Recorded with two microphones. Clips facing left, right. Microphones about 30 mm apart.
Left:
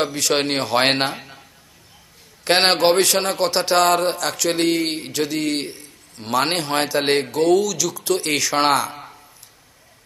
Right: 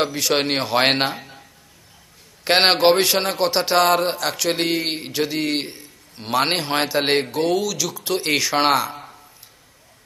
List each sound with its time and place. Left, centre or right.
0.0 s a man's voice: centre
2.4 s a man's voice: centre